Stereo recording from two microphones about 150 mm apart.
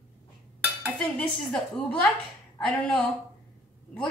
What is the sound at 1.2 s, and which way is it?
A woman's voice, 10° left (ahead or behind).